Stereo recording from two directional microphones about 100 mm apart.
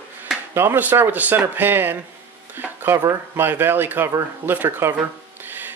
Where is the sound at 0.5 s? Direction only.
20° right (ahead or behind).